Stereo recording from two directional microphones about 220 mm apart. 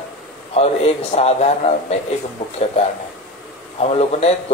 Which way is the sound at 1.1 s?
30° left (ahead or behind).